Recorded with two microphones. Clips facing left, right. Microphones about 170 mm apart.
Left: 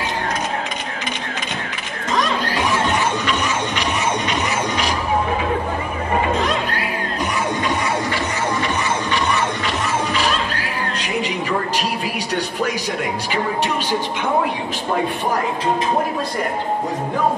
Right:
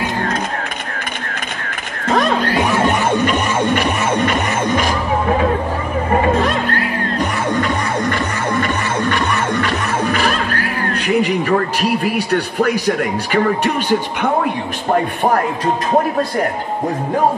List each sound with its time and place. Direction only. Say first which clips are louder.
2.0 s music: right 5 dB; 55° right (ahead or behind)
6.3 s music: right 4 dB; 50° right (ahead or behind)
12.0 s speech: right 6 dB; 55° right (ahead or behind)